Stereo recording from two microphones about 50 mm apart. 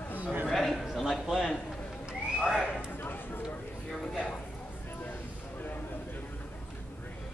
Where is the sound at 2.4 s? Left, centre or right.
Centre.